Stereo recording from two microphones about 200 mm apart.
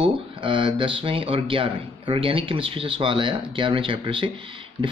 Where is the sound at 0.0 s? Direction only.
25° right (ahead or behind).